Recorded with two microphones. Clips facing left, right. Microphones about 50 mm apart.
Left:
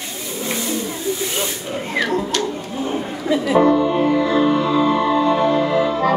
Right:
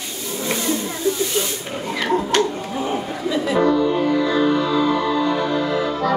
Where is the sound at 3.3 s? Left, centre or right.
Left.